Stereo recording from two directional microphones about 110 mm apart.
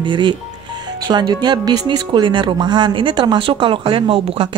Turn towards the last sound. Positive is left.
turn(degrees=-60)  # may be behind; listen again after turning